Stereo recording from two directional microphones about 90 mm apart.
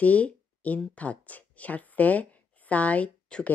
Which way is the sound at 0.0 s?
15° left (ahead or behind).